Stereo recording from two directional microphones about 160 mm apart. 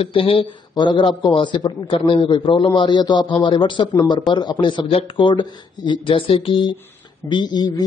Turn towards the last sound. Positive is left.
turn(degrees=25)  # may be behind; listen again after turning